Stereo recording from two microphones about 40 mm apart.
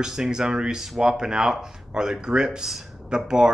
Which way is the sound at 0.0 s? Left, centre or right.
Centre.